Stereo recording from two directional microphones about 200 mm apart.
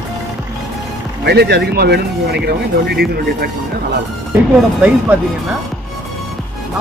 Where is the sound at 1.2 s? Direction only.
55° right (ahead or behind).